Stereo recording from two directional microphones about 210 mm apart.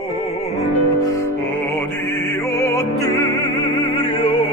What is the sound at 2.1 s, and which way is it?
Music, 10° left (ahead or behind).